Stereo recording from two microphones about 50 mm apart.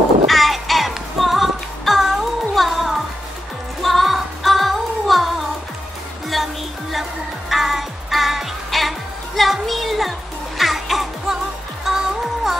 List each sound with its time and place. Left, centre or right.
0.3 s music: centre
6.3 s music: centre